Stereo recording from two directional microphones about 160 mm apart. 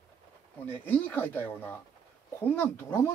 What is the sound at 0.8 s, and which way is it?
Speech, 10° left (ahead or behind).